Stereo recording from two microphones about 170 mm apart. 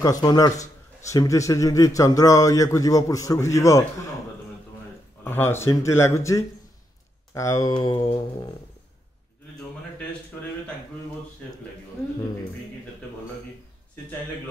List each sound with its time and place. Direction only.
0.0 s speech: 20° left (ahead or behind)
5.2 s speech: 15° left (ahead or behind)